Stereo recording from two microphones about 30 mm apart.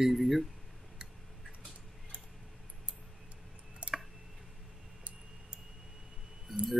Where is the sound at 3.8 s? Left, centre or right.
Right.